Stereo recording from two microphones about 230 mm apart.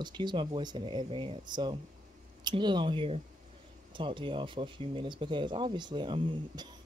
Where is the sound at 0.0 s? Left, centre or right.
Centre.